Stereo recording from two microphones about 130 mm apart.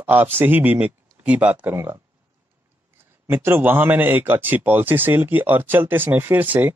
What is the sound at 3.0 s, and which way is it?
A man's voice, 15° right (ahead or behind).